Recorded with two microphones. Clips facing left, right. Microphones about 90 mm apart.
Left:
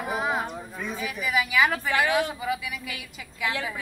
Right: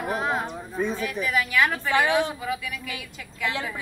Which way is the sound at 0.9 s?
5° left (ahead or behind).